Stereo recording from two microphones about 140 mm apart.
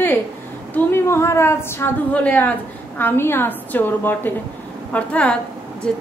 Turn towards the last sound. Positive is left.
turn(degrees=5)  # may be behind; listen again after turning